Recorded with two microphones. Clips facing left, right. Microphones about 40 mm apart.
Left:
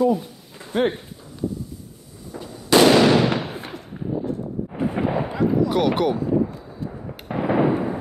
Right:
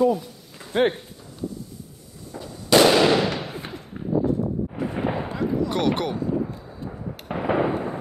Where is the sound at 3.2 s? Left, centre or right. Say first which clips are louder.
Left 4 dB; left.